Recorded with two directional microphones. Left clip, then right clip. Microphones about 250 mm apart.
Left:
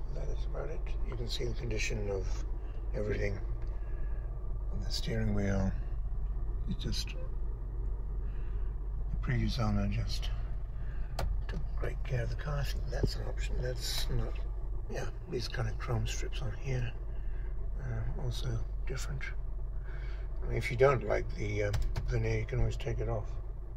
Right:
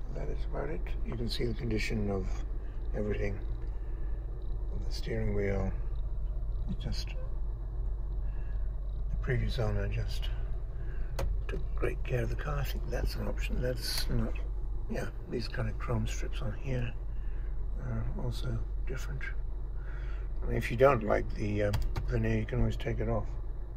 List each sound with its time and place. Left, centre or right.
0.1 s speech: centre
2.9 s speech: centre
4.8 s speech: centre
6.9 s speech: centre
9.2 s speech: centre
11.4 s speech: centre
20.4 s speech: centre